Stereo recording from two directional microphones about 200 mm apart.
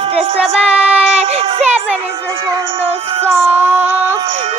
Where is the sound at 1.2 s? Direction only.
30° right (ahead or behind).